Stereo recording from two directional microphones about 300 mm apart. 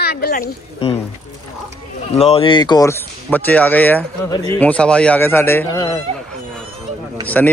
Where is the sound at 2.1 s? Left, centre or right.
Centre.